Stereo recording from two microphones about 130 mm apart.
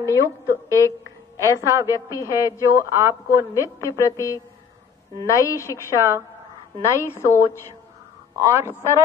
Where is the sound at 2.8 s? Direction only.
20° right (ahead or behind).